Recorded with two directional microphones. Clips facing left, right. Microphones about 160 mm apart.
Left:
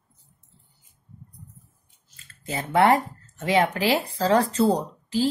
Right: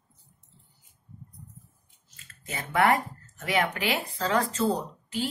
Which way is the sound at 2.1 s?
30° left (ahead or behind).